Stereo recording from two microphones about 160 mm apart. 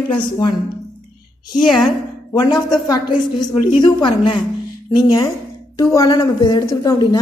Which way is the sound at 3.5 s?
30° left (ahead or behind).